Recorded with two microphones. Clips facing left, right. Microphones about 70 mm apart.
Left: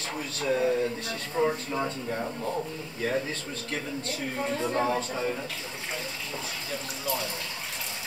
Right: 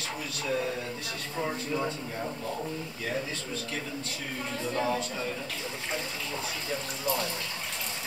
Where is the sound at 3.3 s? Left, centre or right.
Left.